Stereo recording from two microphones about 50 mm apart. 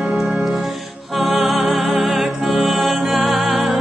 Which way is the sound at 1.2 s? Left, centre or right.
Centre.